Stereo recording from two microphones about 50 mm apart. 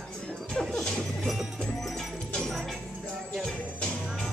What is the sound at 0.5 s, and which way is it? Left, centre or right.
Music, centre.